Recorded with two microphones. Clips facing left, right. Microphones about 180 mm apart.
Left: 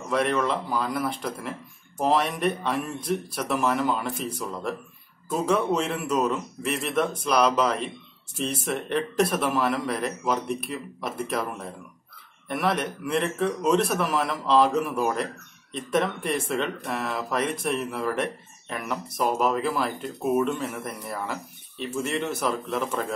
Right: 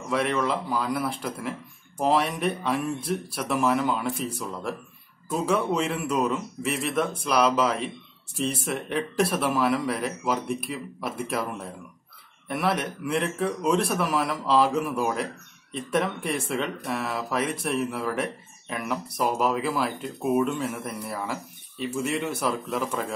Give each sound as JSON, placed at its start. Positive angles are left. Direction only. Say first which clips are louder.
{"t": 0.1, "sound": "speech", "louder": "left 1 dB", "side_deg": 0}